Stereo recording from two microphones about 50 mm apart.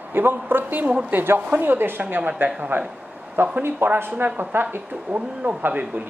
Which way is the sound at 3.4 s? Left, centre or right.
Right.